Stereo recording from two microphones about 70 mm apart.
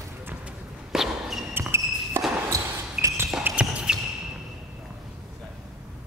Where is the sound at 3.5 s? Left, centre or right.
Centre.